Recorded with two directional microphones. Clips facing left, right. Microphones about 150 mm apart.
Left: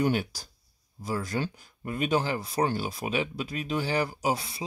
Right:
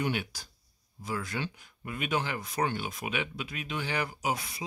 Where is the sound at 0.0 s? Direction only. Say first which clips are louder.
Left 6 dB; 40° left (ahead or behind).